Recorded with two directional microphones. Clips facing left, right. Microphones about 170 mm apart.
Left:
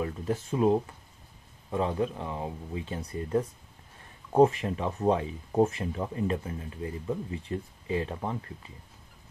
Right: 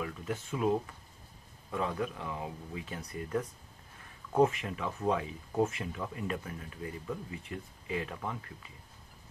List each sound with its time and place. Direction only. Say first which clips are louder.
0.0 s speech: left 6 dB; 35° left (ahead or behind)